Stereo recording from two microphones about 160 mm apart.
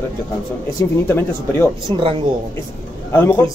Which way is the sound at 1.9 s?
30° right (ahead or behind).